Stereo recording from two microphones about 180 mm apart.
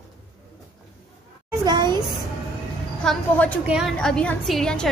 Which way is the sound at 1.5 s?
25° right (ahead or behind).